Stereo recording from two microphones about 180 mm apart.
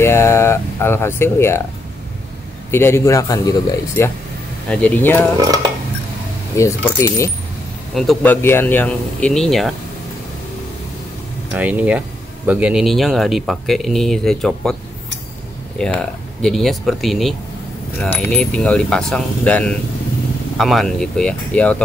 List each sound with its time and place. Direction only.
0.0 s speech: 15° left (ahead or behind)
2.7 s speech: 15° left (ahead or behind)
5.4 s dishes: 20° right (ahead or behind)
6.5 s speech: 15° left (ahead or behind)
7.9 s speech: 5° left (ahead or behind)
11.5 s speech: 10° right (ahead or behind)
15.8 s speech: 5° left (ahead or behind)